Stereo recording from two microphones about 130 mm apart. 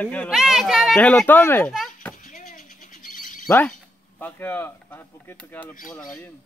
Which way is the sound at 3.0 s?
90° left.